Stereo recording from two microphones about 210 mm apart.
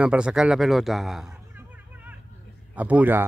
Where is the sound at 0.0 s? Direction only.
5° right (ahead or behind).